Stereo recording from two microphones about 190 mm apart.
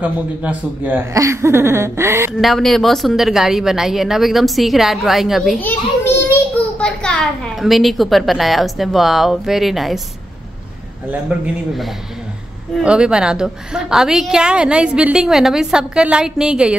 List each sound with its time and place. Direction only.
0.0 s speech: 10° right (ahead or behind)
2.4 s a woman's voice: centre (ahead or behind)
11.1 s a woman's voice: 5° right (ahead or behind)